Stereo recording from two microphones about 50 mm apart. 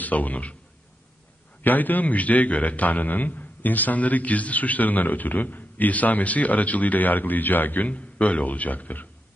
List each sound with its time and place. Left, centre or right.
0.0 s a man's voice: left
1.6 s a man's voice: left